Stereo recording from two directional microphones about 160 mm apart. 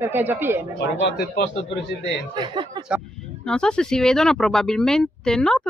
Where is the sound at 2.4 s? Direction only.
30° right (ahead or behind).